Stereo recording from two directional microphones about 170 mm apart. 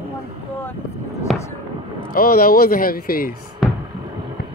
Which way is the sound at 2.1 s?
60° left (ahead or behind).